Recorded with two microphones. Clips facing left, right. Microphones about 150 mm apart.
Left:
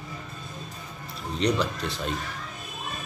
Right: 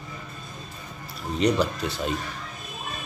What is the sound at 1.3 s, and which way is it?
Speech, 5° right (ahead or behind).